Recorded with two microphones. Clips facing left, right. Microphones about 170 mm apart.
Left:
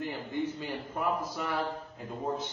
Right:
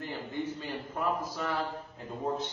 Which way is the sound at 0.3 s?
15° left (ahead or behind).